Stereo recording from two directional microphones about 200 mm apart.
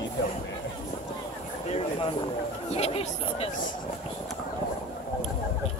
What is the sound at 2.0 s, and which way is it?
Speech, 30° left (ahead or behind).